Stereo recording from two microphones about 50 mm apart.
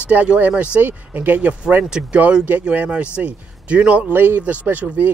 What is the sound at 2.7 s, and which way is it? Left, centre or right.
Speech, right.